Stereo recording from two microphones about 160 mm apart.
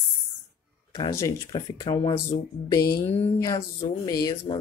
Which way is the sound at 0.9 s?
20° left (ahead or behind).